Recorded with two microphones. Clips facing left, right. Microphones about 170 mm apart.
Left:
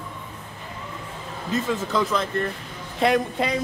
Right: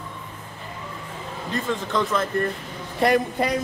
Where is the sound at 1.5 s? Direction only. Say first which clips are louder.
Left 2 dB; centre (ahead or behind).